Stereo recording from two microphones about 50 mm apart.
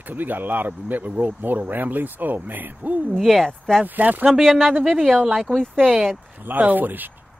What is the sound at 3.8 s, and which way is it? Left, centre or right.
Speech, right.